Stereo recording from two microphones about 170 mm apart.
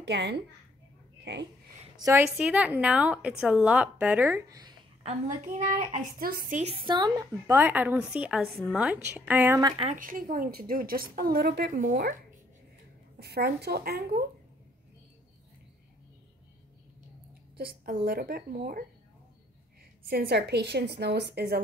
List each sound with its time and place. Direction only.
0.0 s a child's voice: 85° right
2.0 s a woman's voice: 20° right (ahead or behind)
2.3 s a woman's voice: 5° right (ahead or behind)
6.1 s a woman's voice: 60° right (ahead or behind)
6.6 s a woman's voice: 30° right (ahead or behind)
7.4 s a woman's voice: 10° right (ahead or behind)
9.6 s a woman's voice: 25° right (ahead or behind)
9.8 s a woman's voice: 55° right (ahead or behind)
13.2 s a woman's voice: 70° right (ahead or behind)
17.6 s a woman's voice: 60° right (ahead or behind)
20.1 s a woman's voice: 70° right (ahead or behind)